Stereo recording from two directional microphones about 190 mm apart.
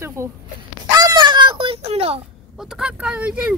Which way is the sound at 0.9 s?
20° right (ahead or behind).